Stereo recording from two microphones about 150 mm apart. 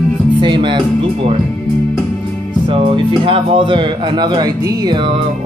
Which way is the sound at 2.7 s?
35° right (ahead or behind).